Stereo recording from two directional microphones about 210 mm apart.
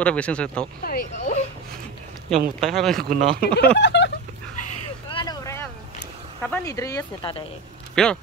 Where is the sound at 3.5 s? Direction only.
55° left (ahead or behind).